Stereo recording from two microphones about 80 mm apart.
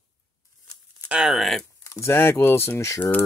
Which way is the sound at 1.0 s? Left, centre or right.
Centre.